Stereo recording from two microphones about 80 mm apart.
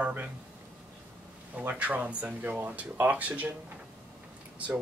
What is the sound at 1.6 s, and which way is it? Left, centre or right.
Speech, centre.